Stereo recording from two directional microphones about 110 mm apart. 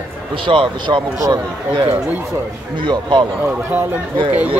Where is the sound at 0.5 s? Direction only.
50° right (ahead or behind).